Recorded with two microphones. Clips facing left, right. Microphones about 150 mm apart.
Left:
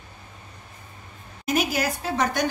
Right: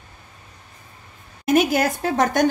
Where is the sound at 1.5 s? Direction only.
55° right (ahead or behind).